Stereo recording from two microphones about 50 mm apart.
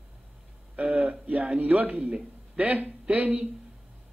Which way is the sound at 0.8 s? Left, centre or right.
Right.